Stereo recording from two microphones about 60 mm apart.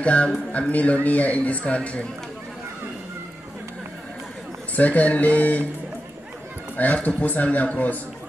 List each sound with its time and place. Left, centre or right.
0.0 s a man's voice: left
4.7 s a man's voice: left
6.8 s a man's voice: left